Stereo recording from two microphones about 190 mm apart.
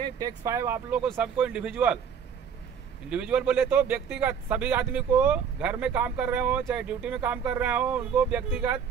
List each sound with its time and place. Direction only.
0.0 s speech: 20° right (ahead or behind); by 2.0 s 5° right (ahead or behind)
3.1 s speech: 5° right (ahead or behind)